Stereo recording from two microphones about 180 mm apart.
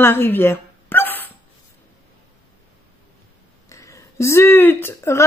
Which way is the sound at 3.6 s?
15° left (ahead or behind).